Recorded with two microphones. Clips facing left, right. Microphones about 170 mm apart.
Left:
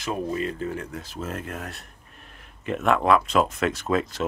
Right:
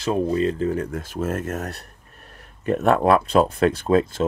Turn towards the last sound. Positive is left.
turn(degrees=-30)  # may be behind; listen again after turning